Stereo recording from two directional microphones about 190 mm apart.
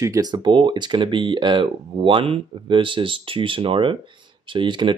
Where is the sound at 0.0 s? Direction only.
20° right (ahead or behind).